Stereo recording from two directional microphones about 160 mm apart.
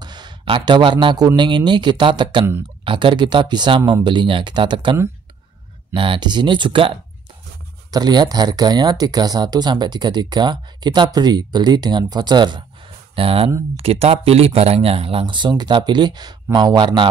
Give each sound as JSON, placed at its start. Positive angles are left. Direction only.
{"t": 0.0, "sound": "speech", "side_deg": -25}
{"t": 5.9, "sound": "speech", "side_deg": -30}
{"t": 7.9, "sound": "speech", "side_deg": -25}